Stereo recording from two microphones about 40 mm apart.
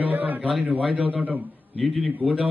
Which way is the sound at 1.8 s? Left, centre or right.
Centre.